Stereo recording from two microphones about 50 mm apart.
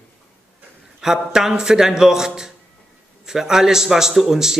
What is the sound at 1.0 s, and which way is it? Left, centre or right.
A man's voice, centre.